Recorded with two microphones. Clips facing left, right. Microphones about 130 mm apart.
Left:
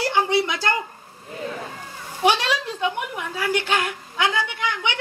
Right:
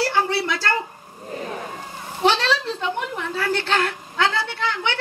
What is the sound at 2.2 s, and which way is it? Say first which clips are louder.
Speech: right 1 dB; 15° left (ahead or behind).